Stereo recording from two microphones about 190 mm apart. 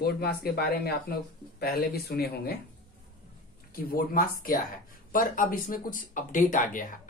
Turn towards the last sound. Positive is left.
turn(degrees=45)  # may be behind; listen again after turning